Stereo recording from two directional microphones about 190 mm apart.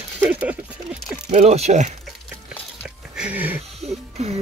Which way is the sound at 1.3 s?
35° right (ahead or behind).